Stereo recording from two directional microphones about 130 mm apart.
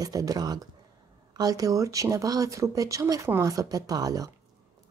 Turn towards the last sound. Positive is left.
turn(degrees=-30)  # may be behind; listen again after turning